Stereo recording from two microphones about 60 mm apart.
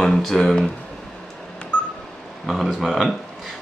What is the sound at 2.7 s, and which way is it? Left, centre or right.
Speech, centre.